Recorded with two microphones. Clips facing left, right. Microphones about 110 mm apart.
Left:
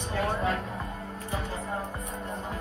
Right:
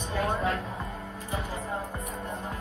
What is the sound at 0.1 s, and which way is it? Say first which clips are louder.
Music: even; 25° right (ahead or behind).